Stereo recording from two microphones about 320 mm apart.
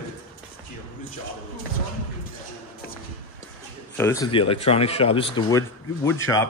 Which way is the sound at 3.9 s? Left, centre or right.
Centre.